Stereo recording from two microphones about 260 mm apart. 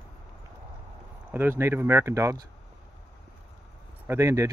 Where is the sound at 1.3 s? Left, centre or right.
Centre.